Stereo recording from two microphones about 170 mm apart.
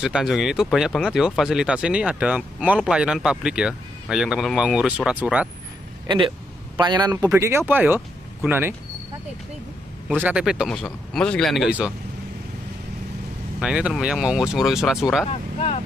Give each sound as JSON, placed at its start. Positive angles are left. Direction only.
{"t": 0.0, "sound": "speech", "side_deg": 0}
{"t": 6.0, "sound": "a man's voice", "side_deg": -30}
{"t": 7.2, "sound": "speech", "side_deg": -15}
{"t": 10.0, "sound": "speech", "side_deg": -10}
{"t": 13.6, "sound": "speech", "side_deg": -5}
{"t": 15.2, "sound": "speech", "side_deg": 35}